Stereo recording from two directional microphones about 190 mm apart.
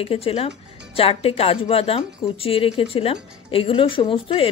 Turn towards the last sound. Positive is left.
turn(degrees=25)  # may be behind; listen again after turning